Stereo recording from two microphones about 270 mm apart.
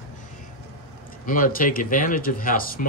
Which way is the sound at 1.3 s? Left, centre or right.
Left.